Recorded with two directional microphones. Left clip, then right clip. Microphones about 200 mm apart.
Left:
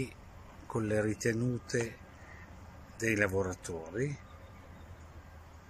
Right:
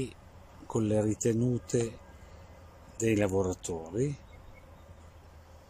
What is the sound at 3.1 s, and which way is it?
Speech, 20° right (ahead or behind).